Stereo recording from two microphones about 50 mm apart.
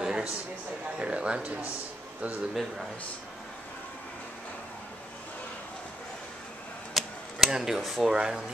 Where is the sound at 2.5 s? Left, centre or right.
Centre.